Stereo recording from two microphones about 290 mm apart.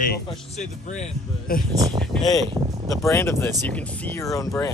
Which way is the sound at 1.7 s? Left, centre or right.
Centre.